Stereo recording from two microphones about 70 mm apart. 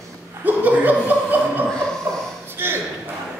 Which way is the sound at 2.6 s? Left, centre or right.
Right.